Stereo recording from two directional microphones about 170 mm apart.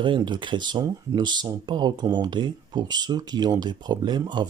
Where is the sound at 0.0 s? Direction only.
25° right (ahead or behind).